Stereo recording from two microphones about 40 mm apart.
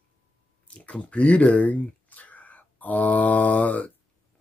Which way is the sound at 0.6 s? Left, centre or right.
Left.